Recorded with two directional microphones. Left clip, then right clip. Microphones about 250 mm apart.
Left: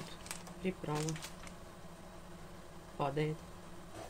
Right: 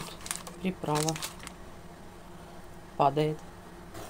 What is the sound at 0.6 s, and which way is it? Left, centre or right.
Speech, centre.